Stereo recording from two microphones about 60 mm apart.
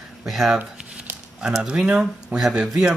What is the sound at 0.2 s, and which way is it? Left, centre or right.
Speech, centre.